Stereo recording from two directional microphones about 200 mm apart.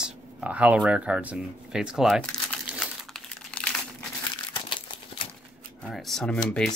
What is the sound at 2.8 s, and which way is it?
Crumpling, centre (ahead or behind).